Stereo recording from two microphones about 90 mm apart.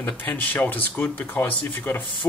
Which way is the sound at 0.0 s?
20° left (ahead or behind).